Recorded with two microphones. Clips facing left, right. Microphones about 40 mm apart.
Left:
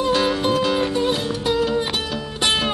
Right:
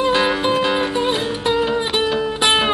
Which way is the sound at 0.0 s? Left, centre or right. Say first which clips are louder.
Right 2 dB; right.